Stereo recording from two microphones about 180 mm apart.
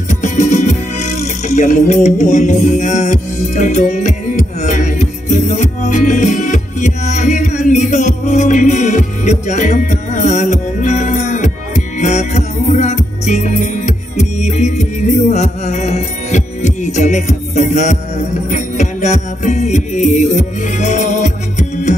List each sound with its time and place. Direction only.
0.1 s speech: 40° left (ahead or behind)
18.5 s music: 40° left (ahead or behind)